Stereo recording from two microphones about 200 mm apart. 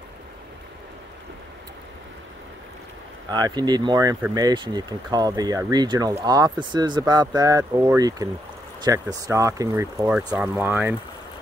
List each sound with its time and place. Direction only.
3.3 s speech: 20° right (ahead or behind)